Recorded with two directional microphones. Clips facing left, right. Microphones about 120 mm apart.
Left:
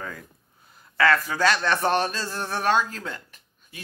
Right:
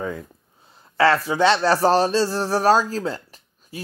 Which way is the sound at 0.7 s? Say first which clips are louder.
Right 4 dB; 30° right (ahead or behind).